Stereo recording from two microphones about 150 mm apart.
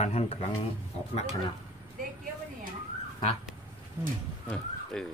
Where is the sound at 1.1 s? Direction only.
45° left (ahead or behind).